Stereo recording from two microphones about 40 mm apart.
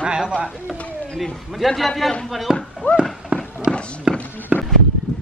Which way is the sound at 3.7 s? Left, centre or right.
Left.